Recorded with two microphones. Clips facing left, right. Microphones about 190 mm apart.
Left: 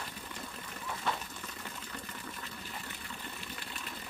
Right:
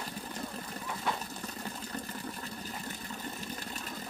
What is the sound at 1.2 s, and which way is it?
Water, 40° right (ahead or behind).